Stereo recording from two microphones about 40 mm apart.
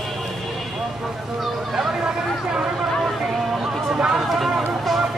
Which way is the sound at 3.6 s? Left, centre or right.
Centre.